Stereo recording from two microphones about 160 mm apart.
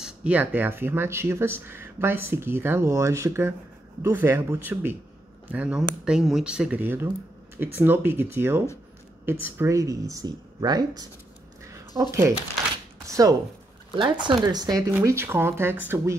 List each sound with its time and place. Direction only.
0.0 s speech: 10° right (ahead or behind)